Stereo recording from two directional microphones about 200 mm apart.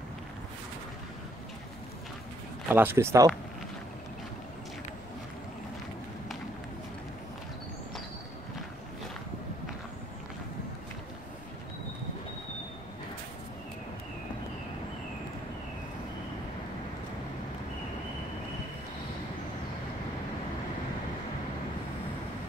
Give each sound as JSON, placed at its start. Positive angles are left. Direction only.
{"t": 2.7, "sound": "speech", "side_deg": -10}